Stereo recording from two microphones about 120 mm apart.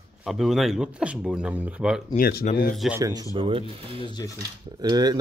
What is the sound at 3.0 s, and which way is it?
Speech, 30° right (ahead or behind).